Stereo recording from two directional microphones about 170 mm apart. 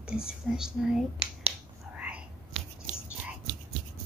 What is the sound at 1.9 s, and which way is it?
Whispering, 5° right (ahead or behind).